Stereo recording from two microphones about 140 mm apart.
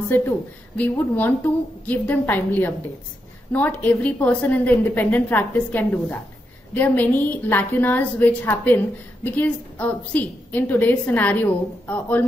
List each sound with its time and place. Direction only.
0.7 s a woman's voice: 10° left (ahead or behind)